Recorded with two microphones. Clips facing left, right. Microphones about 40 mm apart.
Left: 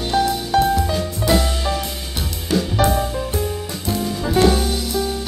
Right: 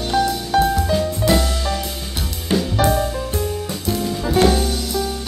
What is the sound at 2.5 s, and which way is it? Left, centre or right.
Music, right.